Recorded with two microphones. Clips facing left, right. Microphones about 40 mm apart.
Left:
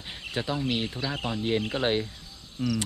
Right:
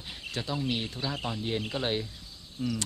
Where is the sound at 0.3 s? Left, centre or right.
Left.